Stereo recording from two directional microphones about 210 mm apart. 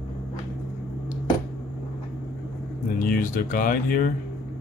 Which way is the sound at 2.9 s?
40° left (ahead or behind).